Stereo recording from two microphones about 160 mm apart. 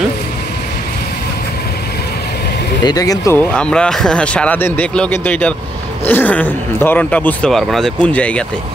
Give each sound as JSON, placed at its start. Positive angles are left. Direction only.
{"t": 2.8, "sound": "speech", "side_deg": 25}
{"t": 3.3, "sound": "speech", "side_deg": 5}